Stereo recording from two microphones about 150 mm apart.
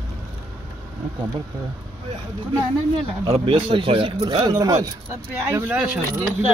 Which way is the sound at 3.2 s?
35° right (ahead or behind).